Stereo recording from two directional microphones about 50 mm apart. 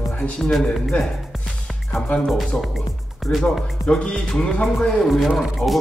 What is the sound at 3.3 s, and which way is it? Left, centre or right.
Speech, left.